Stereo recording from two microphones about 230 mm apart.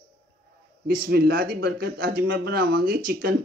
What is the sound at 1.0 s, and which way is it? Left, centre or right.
Speech, right.